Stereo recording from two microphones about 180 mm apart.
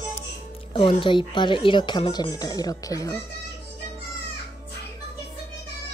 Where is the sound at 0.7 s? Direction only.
30° left (ahead or behind).